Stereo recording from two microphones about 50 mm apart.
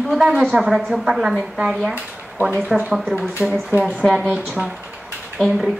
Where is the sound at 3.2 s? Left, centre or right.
Right.